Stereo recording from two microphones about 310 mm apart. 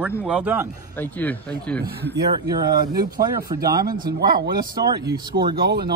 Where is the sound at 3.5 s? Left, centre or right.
Right.